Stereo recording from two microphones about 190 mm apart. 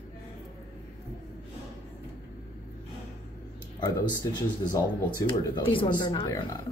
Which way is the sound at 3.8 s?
20° left (ahead or behind).